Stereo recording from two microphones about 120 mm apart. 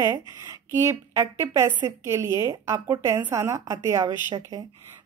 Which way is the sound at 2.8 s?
35° right (ahead or behind).